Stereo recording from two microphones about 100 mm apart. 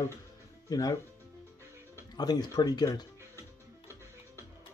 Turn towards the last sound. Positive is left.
turn(degrees=-25)  # may be behind; listen again after turning